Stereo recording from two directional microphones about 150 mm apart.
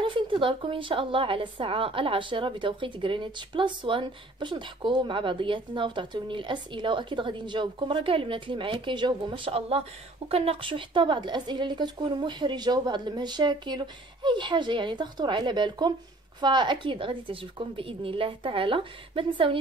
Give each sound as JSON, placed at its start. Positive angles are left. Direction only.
{"t": 0.0, "sound": "a woman's voice", "side_deg": -35}